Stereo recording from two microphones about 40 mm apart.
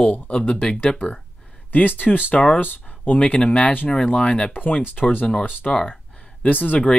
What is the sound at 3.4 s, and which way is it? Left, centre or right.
Speech, left.